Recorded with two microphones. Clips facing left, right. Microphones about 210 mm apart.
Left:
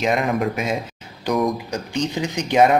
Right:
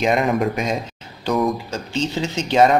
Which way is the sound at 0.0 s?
Centre (ahead or behind).